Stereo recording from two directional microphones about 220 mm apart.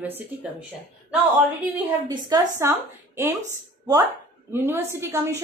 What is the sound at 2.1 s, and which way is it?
Speech, 15° right (ahead or behind).